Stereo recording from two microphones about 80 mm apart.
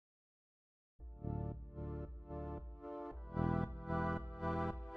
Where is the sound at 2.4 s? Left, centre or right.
Centre.